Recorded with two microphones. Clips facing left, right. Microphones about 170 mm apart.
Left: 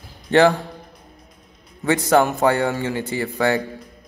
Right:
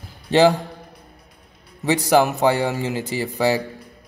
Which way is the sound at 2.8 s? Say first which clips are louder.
Left 1 dB; 15° right (ahead or behind).